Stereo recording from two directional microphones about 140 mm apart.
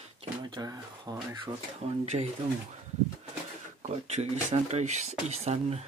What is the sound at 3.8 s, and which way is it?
Speech, 50° right (ahead or behind).